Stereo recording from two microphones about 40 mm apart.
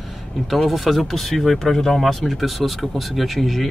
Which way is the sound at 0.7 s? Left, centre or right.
Centre.